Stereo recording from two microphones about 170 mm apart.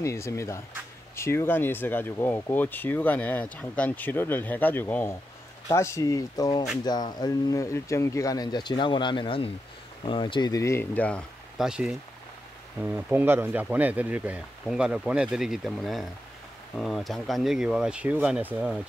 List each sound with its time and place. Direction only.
0.0 s speech: 15° left (ahead or behind)
11.5 s speech: 5° right (ahead or behind)